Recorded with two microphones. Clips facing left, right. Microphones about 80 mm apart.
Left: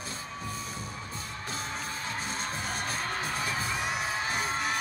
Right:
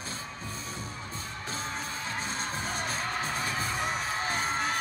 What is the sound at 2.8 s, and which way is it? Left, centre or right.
Music, left.